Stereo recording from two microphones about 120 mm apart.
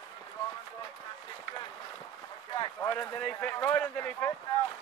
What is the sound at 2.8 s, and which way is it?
Speech, 20° left (ahead or behind).